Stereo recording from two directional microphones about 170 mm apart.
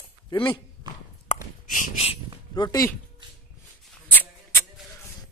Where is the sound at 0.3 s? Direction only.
30° left (ahead or behind).